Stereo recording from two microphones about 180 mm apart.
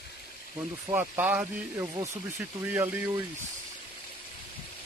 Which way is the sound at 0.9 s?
10° right (ahead or behind).